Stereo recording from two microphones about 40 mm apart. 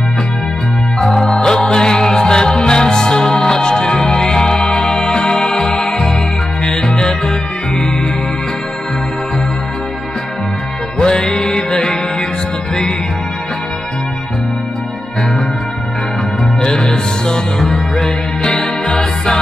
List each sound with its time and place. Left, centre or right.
0.9 s music: centre
11.0 s music: centre
16.6 s music: centre